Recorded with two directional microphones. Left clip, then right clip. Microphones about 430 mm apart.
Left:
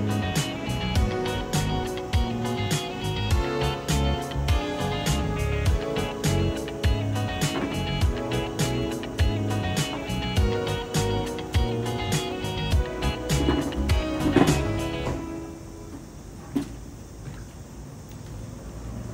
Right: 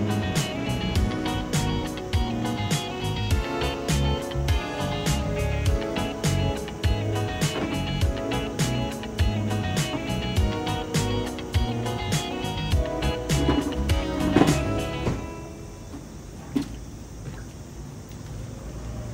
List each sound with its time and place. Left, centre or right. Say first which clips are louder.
0.1 s music: right 1 dB; centre
5.5 s music: even; centre
16.5 s a sound: right 1 dB; centre